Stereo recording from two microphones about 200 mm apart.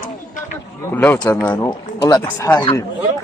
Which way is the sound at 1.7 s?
20° left (ahead or behind).